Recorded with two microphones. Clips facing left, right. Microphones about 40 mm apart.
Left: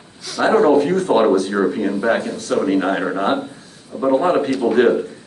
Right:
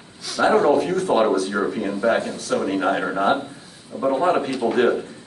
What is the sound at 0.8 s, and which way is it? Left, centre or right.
Speech, left.